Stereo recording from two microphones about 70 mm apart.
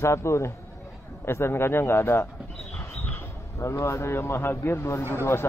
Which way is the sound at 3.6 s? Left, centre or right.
Left.